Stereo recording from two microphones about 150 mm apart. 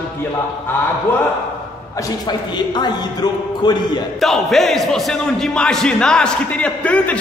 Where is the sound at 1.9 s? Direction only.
25° left (ahead or behind).